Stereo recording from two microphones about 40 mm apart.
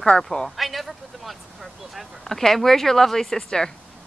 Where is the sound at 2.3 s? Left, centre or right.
Centre.